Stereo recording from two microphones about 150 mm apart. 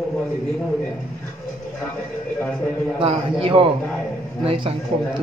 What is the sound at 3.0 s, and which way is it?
A man's voice, 35° right (ahead or behind).